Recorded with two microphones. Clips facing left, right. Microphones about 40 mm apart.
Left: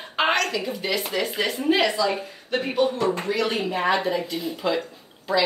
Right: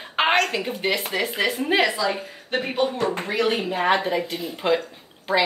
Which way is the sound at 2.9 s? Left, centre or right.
Right.